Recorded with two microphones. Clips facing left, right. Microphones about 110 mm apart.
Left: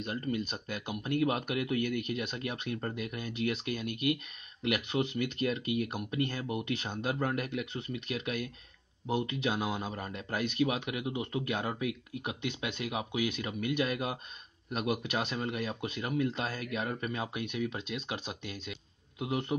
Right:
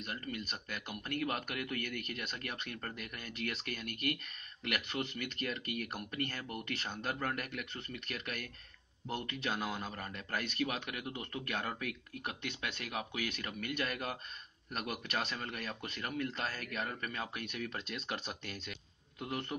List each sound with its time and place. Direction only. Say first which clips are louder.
0.0 s speech: left 8 dB; 25° left (ahead or behind)